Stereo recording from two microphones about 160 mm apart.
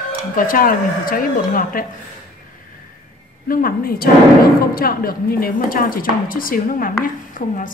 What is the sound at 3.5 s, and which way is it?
Speech, 65° left (ahead or behind).